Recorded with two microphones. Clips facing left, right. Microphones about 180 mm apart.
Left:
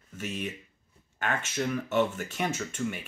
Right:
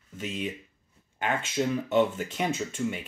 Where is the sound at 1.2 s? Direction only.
20° right (ahead or behind).